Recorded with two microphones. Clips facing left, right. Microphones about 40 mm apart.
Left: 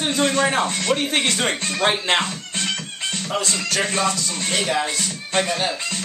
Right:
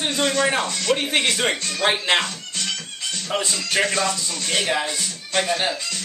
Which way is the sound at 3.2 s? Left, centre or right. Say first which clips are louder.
Even; right.